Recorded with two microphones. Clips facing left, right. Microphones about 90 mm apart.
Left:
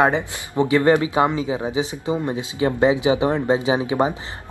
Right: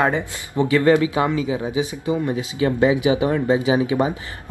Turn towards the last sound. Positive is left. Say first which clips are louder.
# right 1 dB
turn(degrees=25)  # may be behind; listen again after turning